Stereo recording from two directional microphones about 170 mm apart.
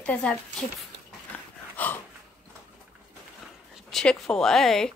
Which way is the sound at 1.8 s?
10° left (ahead or behind).